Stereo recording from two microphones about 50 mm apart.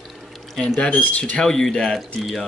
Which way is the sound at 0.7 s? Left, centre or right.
Left.